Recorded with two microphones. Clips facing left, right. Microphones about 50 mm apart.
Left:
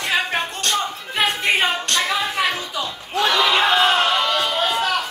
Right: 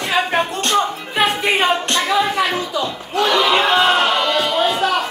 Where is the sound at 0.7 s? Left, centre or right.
Centre.